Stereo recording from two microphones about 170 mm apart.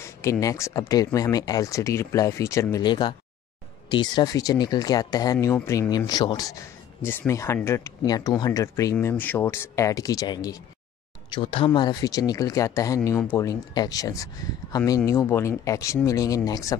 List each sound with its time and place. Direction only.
0.0 s speech: 15° left (ahead or behind)